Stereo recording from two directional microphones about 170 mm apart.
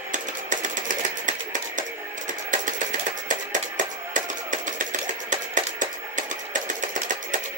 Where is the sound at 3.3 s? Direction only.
50° right (ahead or behind).